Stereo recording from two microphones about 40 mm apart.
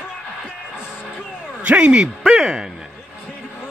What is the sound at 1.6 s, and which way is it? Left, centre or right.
Speech, right.